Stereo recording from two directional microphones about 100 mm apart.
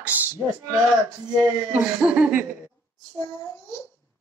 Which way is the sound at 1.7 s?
15° right (ahead or behind).